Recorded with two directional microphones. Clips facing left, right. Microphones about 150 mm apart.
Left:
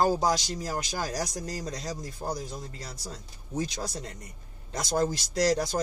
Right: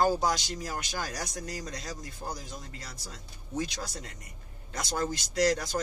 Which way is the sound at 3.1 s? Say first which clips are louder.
Left 2 dB; 35° left (ahead or behind).